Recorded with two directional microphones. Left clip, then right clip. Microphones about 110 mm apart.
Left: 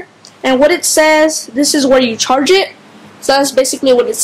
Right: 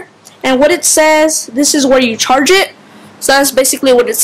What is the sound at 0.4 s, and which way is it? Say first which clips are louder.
A woman's voice: right 1 dB; 20° right (ahead or behind).